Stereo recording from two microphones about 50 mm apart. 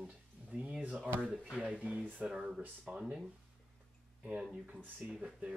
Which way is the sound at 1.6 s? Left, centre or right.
Centre.